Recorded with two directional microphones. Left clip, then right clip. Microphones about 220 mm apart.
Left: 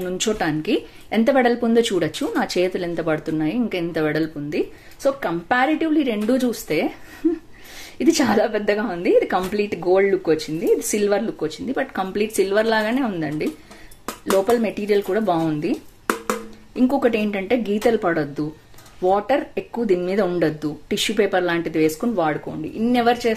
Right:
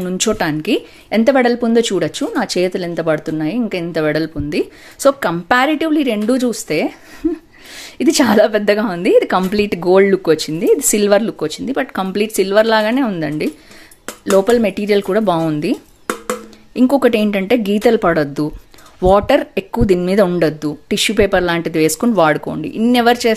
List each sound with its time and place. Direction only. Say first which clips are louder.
0.0 s speech: right 5 dB; 30° right (ahead or behind)
8.0 s a woman's voice: right 6 dB; 30° right (ahead or behind)